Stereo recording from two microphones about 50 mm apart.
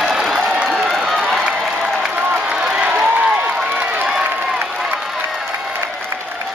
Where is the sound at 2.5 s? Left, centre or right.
Centre.